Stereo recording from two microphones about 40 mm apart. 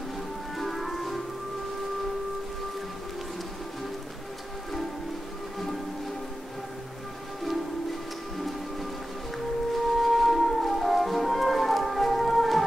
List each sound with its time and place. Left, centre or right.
0.6 s music: centre
9.8 s music: centre